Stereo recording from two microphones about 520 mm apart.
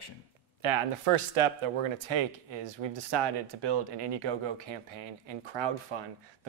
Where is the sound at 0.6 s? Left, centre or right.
Right.